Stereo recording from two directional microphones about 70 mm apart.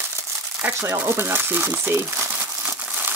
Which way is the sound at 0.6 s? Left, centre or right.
Right.